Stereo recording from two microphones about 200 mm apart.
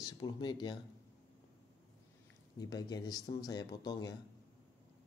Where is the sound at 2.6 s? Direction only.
20° left (ahead or behind).